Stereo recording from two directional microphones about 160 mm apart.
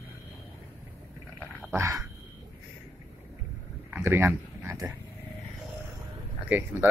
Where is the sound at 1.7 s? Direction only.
20° right (ahead or behind).